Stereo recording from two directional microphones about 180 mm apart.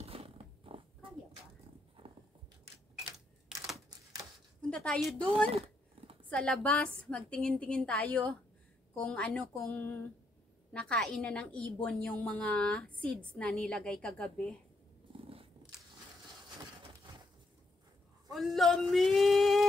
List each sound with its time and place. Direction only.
0.0 s purr: 35° right (ahead or behind)
2.0 s a sound: 30° right (ahead or behind)
3.5 s typewriter: 5° right (ahead or behind)
4.6 s a woman's voice: 5° left (ahead or behind)
5.5 s a sound: 30° right (ahead or behind)
6.2 s a woman's voice: 5° left (ahead or behind)
15.1 s wild animals: 30° right (ahead or behind)
18.3 s speech: centre (ahead or behind)